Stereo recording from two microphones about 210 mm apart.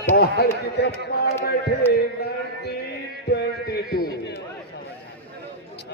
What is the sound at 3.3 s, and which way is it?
Music, 50° left (ahead or behind).